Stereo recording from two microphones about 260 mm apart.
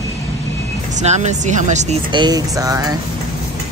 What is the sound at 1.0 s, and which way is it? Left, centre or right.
Speech, right.